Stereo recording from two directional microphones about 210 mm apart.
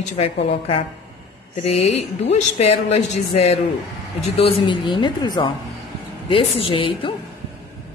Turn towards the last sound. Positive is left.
turn(degrees=25)  # may be behind; listen again after turning